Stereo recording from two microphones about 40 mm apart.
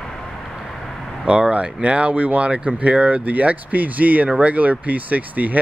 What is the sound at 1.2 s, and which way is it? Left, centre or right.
Speech, right.